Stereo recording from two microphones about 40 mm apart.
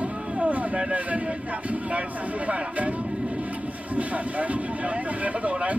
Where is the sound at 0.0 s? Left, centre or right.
Right.